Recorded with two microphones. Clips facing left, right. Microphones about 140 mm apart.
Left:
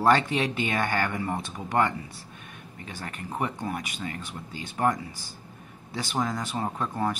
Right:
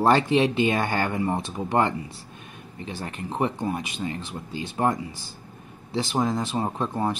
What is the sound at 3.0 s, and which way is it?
Speech, 25° right (ahead or behind).